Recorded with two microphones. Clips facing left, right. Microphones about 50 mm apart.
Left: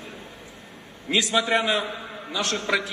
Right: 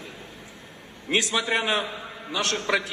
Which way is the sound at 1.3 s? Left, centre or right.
Left.